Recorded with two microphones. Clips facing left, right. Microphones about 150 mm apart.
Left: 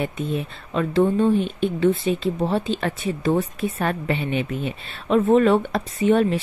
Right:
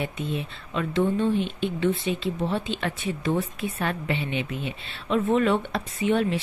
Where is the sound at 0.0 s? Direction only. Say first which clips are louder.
Left 4 dB; 45° left (ahead or behind).